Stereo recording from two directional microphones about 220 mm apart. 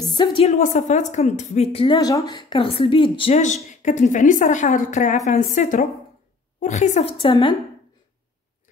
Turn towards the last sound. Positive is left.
turn(degrees=25)  # may be behind; listen again after turning